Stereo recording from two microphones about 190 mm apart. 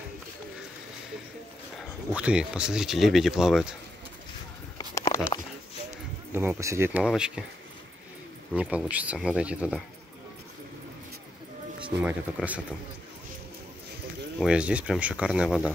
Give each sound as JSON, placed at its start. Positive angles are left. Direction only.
{"t": 1.8, "sound": "speech", "side_deg": -5}
{"t": 4.7, "sound": "a sound", "side_deg": 15}
{"t": 6.3, "sound": "speech", "side_deg": -10}
{"t": 8.5, "sound": "speech", "side_deg": -5}
{"t": 11.9, "sound": "speech", "side_deg": -10}
{"t": 14.4, "sound": "speech", "side_deg": -5}